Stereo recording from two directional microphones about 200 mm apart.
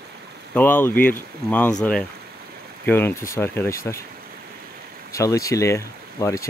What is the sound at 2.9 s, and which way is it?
Speech, 10° left (ahead or behind).